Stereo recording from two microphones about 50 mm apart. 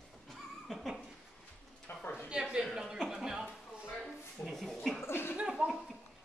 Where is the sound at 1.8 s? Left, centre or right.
Left.